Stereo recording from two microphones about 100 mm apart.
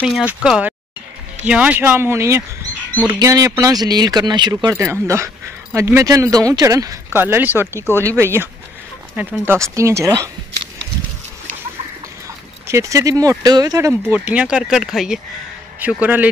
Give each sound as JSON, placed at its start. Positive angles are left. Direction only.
{"t": 0.0, "sound": "speech", "side_deg": -10}
{"t": 4.7, "sound": "speech", "side_deg": -25}
{"t": 6.0, "sound": "speech", "side_deg": -35}
{"t": 7.1, "sound": "speech", "side_deg": -20}
{"t": 9.5, "sound": "speech", "side_deg": -30}
{"t": 12.6, "sound": "speech", "side_deg": -30}
{"t": 14.1, "sound": "speech", "side_deg": -15}
{"t": 15.8, "sound": "speech", "side_deg": -15}